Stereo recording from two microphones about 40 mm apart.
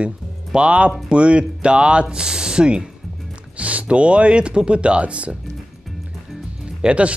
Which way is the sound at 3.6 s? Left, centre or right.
Right.